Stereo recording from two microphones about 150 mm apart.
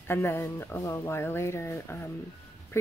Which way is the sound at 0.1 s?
15° left (ahead or behind).